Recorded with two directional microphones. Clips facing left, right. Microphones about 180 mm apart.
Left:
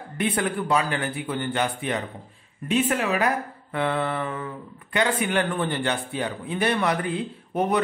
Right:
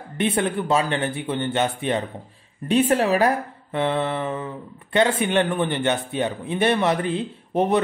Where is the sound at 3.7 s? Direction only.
25° right (ahead or behind).